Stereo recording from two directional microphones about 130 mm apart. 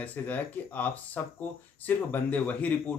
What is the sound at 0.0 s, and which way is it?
Speech, 15° left (ahead or behind).